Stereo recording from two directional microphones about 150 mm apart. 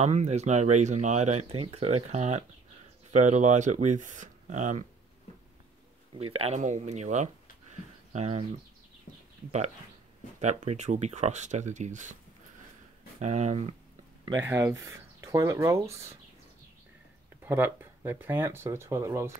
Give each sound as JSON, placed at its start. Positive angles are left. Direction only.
{"t": 0.0, "sound": "speech", "side_deg": -50}
{"t": 6.1, "sound": "speech", "side_deg": -45}
{"t": 7.7, "sound": "a sound", "side_deg": -50}
{"t": 10.4, "sound": "speech", "side_deg": -50}
{"t": 13.2, "sound": "speech", "side_deg": -50}
{"t": 14.4, "sound": "speech", "side_deg": -20}
{"t": 17.4, "sound": "speech", "side_deg": -15}